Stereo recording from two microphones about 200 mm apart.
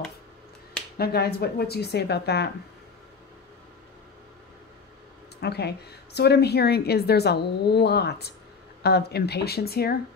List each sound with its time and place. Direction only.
0.9 s speech: 50° left (ahead or behind)
5.4 s a woman's voice: 55° left (ahead or behind)